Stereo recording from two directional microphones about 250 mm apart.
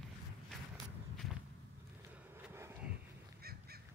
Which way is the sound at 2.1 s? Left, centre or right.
Centre.